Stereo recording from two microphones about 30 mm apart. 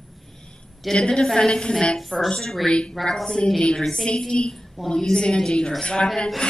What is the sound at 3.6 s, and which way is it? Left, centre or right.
A woman's voice, left.